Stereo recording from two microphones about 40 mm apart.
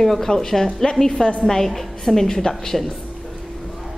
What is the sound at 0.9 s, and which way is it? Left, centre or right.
A woman's voice, centre.